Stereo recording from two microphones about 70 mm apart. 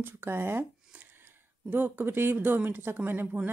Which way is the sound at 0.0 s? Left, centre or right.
Right.